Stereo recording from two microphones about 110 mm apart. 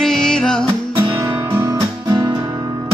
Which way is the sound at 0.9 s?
25° right (ahead or behind).